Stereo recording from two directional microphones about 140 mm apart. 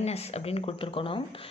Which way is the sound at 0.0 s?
50° left (ahead or behind).